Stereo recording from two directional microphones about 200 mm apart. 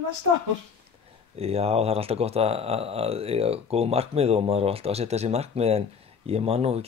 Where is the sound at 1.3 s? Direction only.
30° right (ahead or behind).